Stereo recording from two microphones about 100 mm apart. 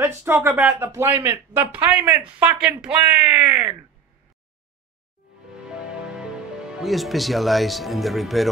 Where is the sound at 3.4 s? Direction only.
35° right (ahead or behind).